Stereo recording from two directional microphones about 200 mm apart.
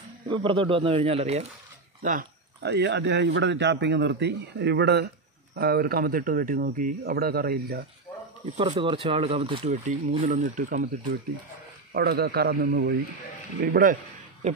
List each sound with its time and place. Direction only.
0.3 s speech: 25° right (ahead or behind)
2.6 s speech: 60° right (ahead or behind)
8.5 s speech: 25° right (ahead or behind)
11.9 s a man's voice: 50° right (ahead or behind)
14.4 s speech: 30° right (ahead or behind)